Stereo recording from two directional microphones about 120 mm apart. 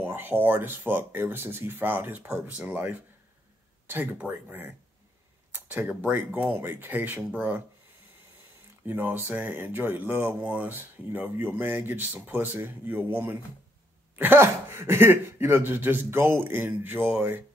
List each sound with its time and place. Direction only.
0.0 s speech: 15° right (ahead or behind)
8.8 s speech: 15° right (ahead or behind)